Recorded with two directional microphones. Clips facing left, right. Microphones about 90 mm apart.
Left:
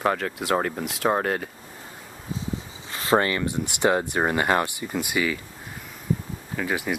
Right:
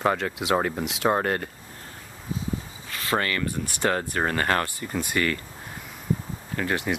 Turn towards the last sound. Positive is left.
turn(degrees=5)  # may be behind; listen again after turning